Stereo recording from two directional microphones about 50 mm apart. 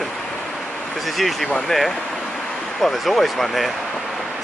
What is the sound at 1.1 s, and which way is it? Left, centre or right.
Speech, centre.